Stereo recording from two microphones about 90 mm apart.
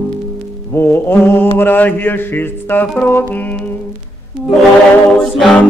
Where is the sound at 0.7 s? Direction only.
25° left (ahead or behind).